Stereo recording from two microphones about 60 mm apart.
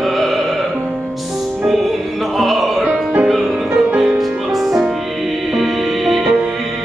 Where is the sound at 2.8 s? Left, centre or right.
Centre.